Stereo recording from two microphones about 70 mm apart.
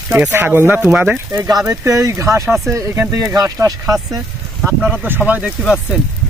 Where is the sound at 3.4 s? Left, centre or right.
Right.